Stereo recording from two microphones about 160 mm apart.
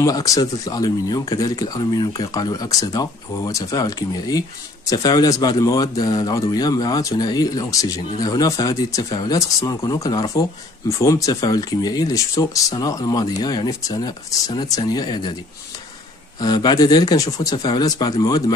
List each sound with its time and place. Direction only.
0.0 s speech: 20° left (ahead or behind)
16.3 s speech: 25° left (ahead or behind)